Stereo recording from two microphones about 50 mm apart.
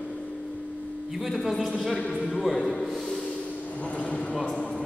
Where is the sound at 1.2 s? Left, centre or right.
Centre.